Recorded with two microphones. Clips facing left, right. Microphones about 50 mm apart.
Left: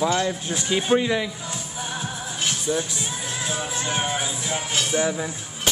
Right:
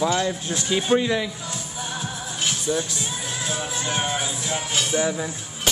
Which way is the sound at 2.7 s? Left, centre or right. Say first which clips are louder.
Even; centre.